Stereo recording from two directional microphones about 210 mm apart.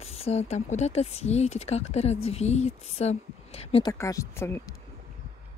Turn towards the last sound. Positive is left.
turn(degrees=10)  # may be behind; listen again after turning